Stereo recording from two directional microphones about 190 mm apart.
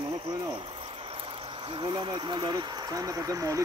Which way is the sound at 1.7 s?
25° right (ahead or behind).